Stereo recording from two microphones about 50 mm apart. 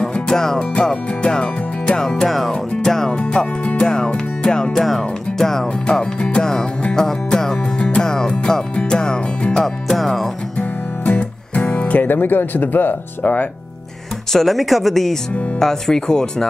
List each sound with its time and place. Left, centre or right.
0.0 s music: centre
2.5 s music: centre
10.6 s music: left
12.1 s speech: left
14.3 s speech: centre